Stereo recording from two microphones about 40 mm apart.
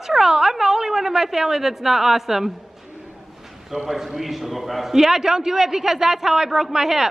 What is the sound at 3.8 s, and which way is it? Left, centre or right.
A man's voice, centre.